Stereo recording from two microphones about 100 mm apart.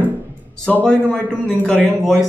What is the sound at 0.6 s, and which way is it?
A man's voice, 10° left (ahead or behind).